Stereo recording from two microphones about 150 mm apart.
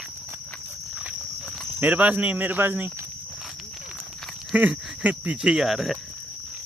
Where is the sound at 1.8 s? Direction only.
10° right (ahead or behind).